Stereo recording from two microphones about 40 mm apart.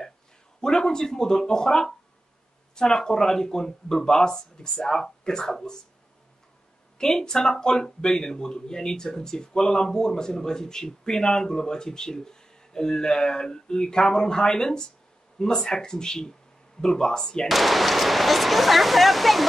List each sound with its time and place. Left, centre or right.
0.6 s speech: centre
7.0 s speech: centre
17.5 s speech: centre